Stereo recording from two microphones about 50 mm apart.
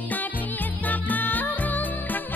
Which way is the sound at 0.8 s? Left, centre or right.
Left.